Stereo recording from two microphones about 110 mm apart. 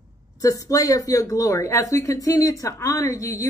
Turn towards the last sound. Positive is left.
turn(degrees=30)  # may be behind; listen again after turning